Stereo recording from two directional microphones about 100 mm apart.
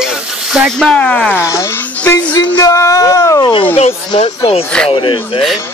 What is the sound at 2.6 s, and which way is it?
Speech, 35° left (ahead or behind).